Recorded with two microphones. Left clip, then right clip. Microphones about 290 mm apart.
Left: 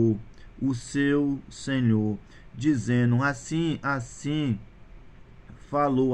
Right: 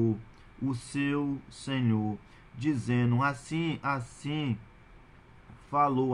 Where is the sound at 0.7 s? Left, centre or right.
Right.